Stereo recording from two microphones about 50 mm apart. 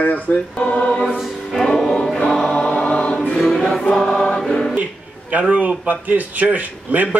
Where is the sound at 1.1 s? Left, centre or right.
Centre.